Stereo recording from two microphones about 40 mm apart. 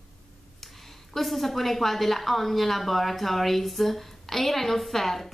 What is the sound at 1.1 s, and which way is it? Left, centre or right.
A woman's voice, centre.